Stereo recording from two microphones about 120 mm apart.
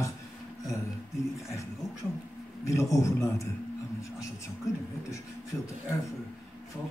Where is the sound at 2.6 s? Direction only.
25° left (ahead or behind).